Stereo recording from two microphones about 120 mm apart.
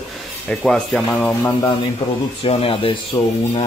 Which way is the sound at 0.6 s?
5° left (ahead or behind).